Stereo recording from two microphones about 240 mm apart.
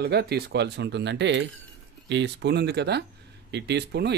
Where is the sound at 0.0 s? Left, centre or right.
Right.